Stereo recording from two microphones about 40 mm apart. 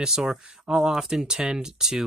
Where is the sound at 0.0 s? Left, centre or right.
Centre.